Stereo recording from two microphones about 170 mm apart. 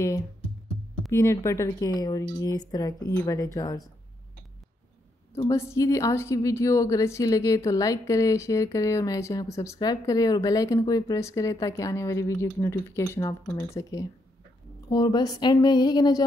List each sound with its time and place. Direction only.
1.1 s a woman's voice: 20° left (ahead or behind)
5.3 s a woman's voice: 15° left (ahead or behind)